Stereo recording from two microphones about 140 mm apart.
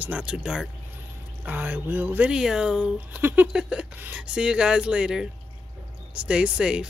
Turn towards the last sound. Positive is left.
turn(degrees=-5)  # may be behind; listen again after turning